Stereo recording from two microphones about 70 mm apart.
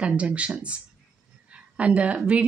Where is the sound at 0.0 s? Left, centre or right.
Centre.